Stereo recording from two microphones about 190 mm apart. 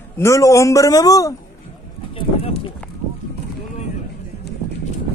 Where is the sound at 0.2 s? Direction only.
15° left (ahead or behind).